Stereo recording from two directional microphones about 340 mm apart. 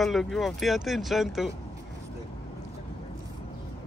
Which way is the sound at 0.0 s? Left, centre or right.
Centre.